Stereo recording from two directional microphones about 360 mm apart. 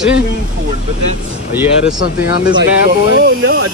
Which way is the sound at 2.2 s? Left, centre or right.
Left.